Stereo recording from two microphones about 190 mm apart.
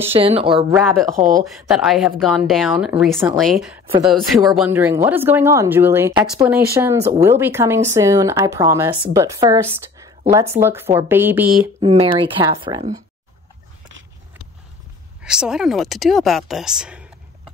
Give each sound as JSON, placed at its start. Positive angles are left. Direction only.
{"t": 0.1, "sound": "speech", "side_deg": -30}
{"t": 0.8, "sound": "a woman's voice", "side_deg": 0}
{"t": 11.8, "sound": "speech", "side_deg": -30}
{"t": 15.2, "sound": "speech", "side_deg": -5}